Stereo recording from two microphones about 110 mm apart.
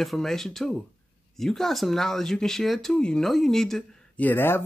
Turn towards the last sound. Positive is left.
turn(degrees=20)  # may be behind; listen again after turning